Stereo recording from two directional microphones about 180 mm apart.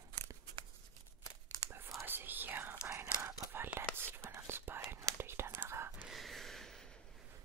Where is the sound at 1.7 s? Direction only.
15° right (ahead or behind).